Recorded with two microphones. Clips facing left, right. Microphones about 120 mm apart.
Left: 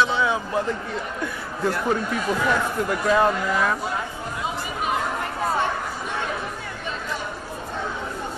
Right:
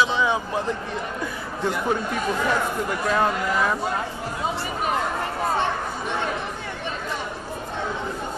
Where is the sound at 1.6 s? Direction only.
Centre (ahead or behind).